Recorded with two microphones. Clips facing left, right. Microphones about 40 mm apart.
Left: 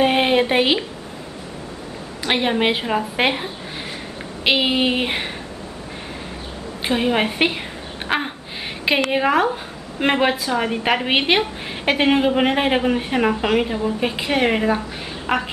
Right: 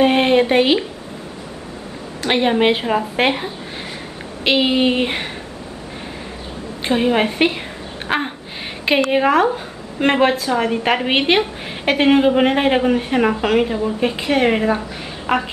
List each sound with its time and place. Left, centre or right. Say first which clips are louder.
0.0 s speech: right 3 dB; centre
2.2 s a woman's voice: right 3 dB; centre
4.5 s a woman's voice: right 2 dB; centre
6.8 s a woman's voice: right 3 dB; centre